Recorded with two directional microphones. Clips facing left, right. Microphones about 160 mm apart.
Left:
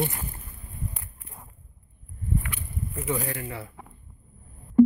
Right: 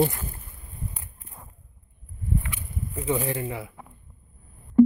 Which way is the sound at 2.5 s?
15° right (ahead or behind).